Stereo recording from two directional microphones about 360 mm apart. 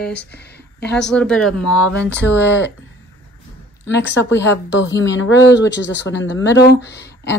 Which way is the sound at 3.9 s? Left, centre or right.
Left.